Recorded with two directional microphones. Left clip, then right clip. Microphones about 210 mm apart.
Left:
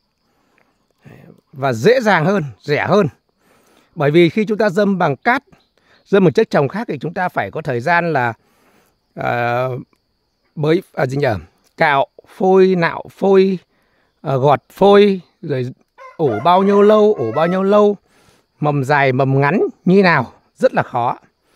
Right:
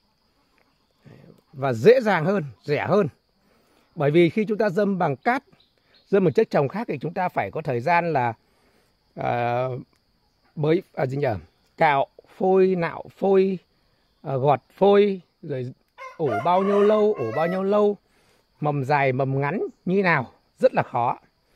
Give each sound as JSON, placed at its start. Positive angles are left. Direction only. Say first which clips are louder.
{"t": 0.6, "sound": "speech", "louder": "left 6 dB", "side_deg": 30}